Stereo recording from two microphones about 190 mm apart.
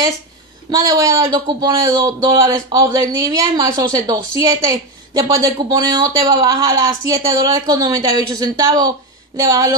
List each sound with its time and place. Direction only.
0.7 s a man's voice: 20° right (ahead or behind)